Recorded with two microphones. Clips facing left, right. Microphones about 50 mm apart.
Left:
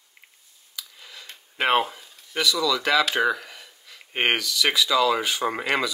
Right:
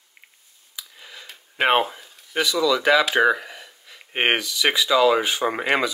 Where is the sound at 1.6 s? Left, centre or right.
Centre.